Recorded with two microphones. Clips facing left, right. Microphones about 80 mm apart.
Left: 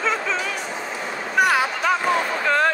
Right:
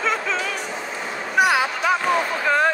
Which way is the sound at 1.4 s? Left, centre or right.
Centre.